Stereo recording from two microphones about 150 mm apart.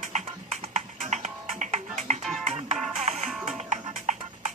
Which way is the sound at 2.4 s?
45° right (ahead or behind).